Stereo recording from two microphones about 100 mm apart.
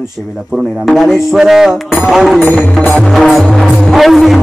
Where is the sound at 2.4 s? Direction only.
15° left (ahead or behind).